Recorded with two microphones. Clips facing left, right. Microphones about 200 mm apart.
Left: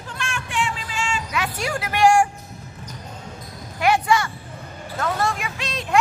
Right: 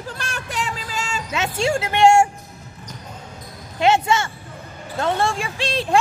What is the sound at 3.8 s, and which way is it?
Speech, 25° right (ahead or behind).